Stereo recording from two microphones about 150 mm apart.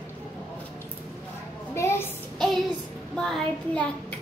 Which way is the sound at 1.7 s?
20° left (ahead or behind).